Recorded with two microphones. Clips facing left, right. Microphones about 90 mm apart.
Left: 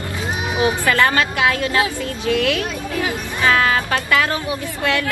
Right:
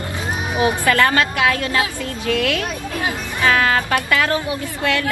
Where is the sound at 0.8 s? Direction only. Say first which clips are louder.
Right 1 dB; 25° left (ahead or behind).